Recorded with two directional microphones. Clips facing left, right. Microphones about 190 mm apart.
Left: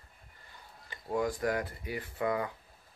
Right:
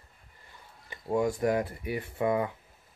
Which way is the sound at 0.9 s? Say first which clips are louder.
Right 4 dB; 25° right (ahead or behind).